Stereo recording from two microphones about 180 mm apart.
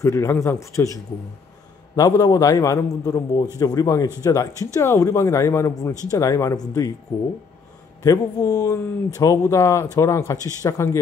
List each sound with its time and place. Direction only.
0.0 s speech: 15° left (ahead or behind)
2.0 s a man's voice: 20° left (ahead or behind)
8.0 s speech: 20° left (ahead or behind)